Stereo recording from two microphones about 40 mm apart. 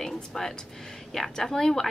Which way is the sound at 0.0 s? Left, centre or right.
Centre.